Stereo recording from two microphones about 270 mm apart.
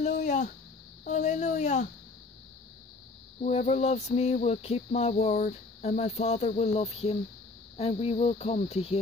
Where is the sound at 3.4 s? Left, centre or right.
Left.